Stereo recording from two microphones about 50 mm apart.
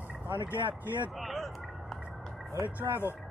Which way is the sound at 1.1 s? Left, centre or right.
Centre.